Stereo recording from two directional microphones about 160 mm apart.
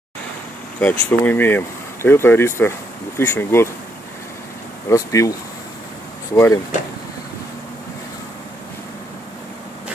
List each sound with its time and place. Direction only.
0.7 s speech: 10° left (ahead or behind)
4.8 s speech: 20° left (ahead or behind)
6.3 s speech: 15° left (ahead or behind)